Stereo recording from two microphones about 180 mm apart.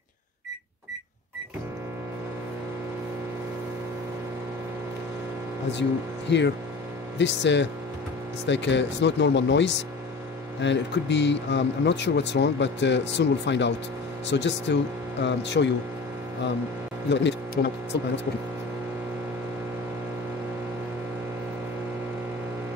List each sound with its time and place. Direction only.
6.3 s speech: 75° left (ahead or behind)
17.1 s speech: 80° left